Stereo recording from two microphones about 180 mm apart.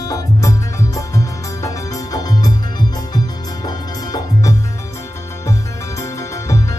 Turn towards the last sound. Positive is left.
turn(degrees=15)  # may be behind; listen again after turning